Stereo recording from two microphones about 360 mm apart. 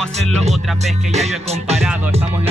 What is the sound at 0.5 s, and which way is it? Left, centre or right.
Music, centre.